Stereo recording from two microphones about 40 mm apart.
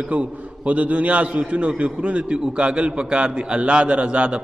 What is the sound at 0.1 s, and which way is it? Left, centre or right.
A man's voice, right.